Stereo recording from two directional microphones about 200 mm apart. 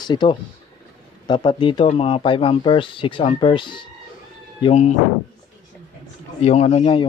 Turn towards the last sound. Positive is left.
turn(degrees=30)  # may be behind; listen again after turning